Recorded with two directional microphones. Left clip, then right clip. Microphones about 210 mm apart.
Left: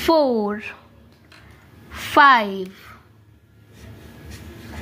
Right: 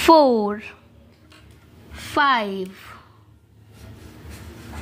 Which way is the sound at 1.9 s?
20° left (ahead or behind).